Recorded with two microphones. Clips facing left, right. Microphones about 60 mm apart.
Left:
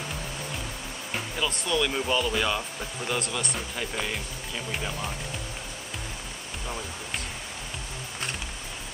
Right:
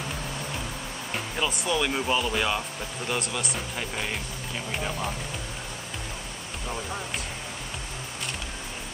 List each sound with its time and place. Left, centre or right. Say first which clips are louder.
1.3 s speech: right 1 dB; centre